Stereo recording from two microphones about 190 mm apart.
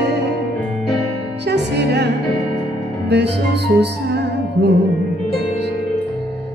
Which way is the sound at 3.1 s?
60° right (ahead or behind).